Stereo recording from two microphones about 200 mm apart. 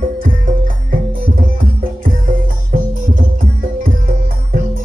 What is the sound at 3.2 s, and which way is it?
Music, 45° right (ahead or behind).